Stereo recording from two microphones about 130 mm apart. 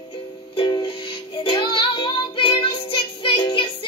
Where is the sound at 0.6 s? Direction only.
35° left (ahead or behind).